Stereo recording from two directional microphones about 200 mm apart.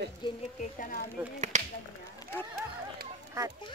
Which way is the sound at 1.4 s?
35° right (ahead or behind).